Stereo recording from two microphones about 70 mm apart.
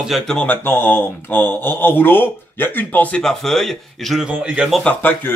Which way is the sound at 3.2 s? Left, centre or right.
Centre.